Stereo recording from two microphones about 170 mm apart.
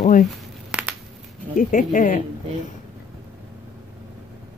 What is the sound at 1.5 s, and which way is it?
Speech, 50° left (ahead or behind).